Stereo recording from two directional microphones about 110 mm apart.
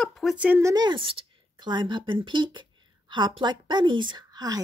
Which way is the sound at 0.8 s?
50° right (ahead or behind).